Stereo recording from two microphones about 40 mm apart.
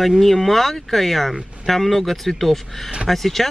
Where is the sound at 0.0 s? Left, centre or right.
Centre.